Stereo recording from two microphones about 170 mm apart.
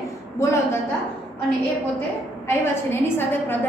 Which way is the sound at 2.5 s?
15° left (ahead or behind).